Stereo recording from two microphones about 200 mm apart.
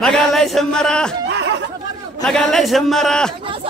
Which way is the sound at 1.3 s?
60° right (ahead or behind).